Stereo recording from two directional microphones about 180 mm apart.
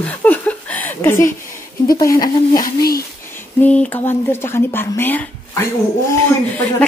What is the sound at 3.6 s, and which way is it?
Speech, 5° left (ahead or behind).